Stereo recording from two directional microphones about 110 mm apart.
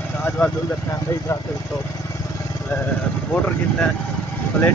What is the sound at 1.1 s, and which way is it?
Speech, 20° left (ahead or behind).